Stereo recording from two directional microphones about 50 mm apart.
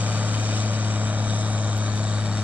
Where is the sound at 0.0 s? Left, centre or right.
Right.